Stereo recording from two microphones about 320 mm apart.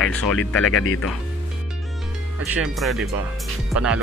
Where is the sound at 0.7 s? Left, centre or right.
Left.